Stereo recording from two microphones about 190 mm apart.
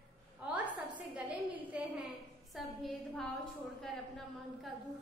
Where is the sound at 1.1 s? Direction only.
10° right (ahead or behind).